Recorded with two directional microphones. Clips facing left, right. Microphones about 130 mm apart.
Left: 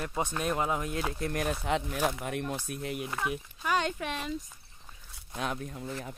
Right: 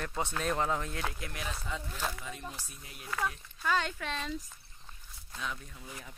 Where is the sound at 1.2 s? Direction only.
50° left (ahead or behind).